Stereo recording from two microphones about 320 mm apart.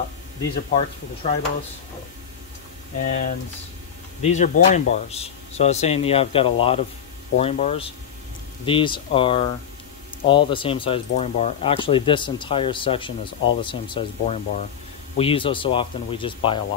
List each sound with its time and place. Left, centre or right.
0.7 s speech: left
3.0 s speech: left